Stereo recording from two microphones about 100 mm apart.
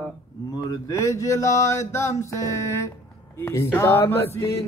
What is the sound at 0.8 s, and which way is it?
Mantra, 30° left (ahead or behind).